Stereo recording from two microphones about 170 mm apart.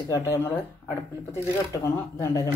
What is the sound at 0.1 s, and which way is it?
Speech, 15° left (ahead or behind).